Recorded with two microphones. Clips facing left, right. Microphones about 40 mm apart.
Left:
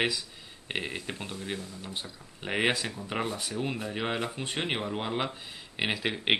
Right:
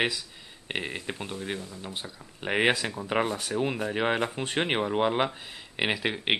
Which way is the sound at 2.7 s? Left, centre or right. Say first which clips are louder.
Right 4 dB; right.